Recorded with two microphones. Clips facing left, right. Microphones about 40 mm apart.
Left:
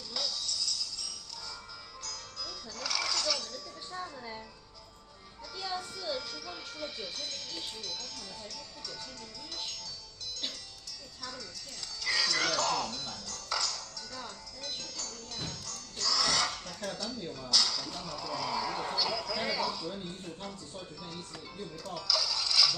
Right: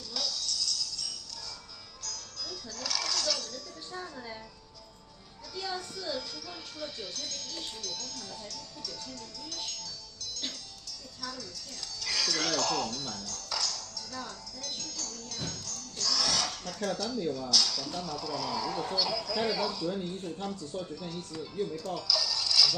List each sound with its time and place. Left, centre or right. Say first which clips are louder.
0.1 s jingle bell: right 1 dB; centre
2.0 s music: right 2 dB; centre
3.9 s music: even; centre
5.6 s a child's voice: right 1 dB; centre
9.5 s music: right 1 dB; centre
11.1 s speech: right 3 dB; centre
21.6 s music: right 3 dB; centre